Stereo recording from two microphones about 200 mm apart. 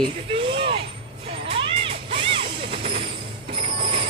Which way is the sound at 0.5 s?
25° right (ahead or behind).